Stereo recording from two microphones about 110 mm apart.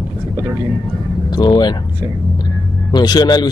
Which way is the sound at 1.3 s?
40° left (ahead or behind).